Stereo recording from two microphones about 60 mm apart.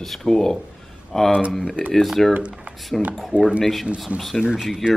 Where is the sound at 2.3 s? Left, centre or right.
Centre.